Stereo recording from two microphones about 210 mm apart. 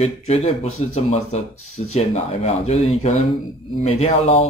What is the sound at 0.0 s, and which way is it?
Speech, 30° left (ahead or behind).